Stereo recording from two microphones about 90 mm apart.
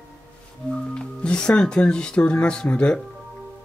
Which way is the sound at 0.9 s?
10° left (ahead or behind).